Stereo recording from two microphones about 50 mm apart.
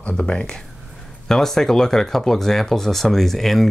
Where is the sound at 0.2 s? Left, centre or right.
Centre.